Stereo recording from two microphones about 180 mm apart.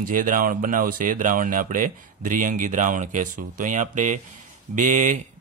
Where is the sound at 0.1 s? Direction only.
50° right (ahead or behind).